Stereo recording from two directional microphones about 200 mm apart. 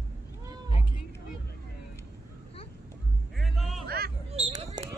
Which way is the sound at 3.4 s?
Centre (ahead or behind).